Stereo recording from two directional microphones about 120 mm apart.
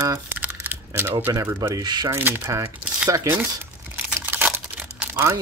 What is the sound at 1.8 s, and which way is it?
Speech, 35° right (ahead or behind).